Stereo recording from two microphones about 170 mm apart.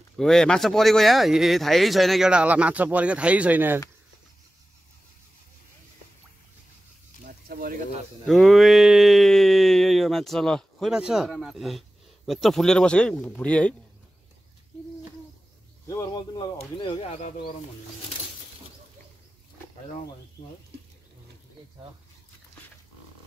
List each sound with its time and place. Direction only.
0.2 s speech: 5° left (ahead or behind)
7.2 s a sound: 60° right (ahead or behind)
8.3 s speech: centre (ahead or behind)
15.9 s a man's voice: 20° left (ahead or behind)